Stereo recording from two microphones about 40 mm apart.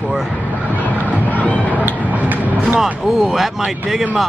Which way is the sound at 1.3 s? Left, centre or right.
Left.